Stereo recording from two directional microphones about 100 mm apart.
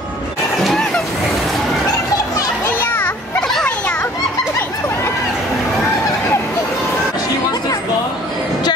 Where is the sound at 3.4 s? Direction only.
5° left (ahead or behind).